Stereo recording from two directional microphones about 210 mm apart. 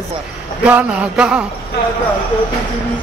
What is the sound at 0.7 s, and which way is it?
Speech, 5° right (ahead or behind).